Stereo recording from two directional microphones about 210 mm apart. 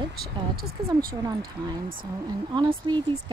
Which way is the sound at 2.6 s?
20° right (ahead or behind).